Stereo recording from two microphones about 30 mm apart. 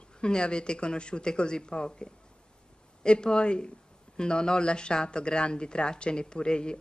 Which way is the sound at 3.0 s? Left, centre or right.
Left.